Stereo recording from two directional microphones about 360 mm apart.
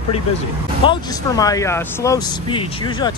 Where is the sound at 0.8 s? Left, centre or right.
Centre.